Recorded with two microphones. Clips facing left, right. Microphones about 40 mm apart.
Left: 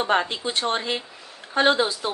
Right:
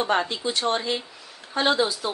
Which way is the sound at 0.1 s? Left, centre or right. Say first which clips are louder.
Left 1 dB; left.